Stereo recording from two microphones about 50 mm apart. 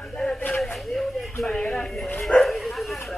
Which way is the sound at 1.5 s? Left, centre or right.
Centre.